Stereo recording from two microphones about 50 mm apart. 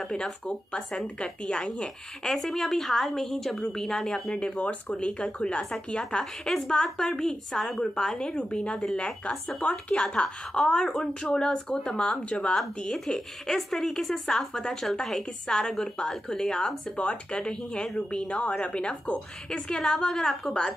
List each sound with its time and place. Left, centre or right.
0.0 s a woman's voice: centre
2.2 s a woman's voice: centre
8.9 s a woman's voice: left
12.5 s a woman's voice: centre
19.7 s a woman's voice: centre